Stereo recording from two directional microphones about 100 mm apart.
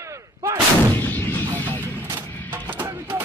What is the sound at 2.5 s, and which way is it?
Music, 20° right (ahead or behind).